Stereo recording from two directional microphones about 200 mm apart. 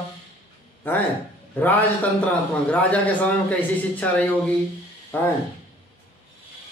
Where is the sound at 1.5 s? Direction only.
10° left (ahead or behind).